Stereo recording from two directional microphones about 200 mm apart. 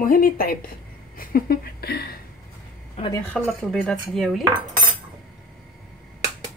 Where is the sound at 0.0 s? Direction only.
45° left (ahead or behind).